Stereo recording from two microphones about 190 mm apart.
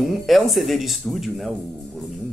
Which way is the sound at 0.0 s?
Centre (ahead or behind).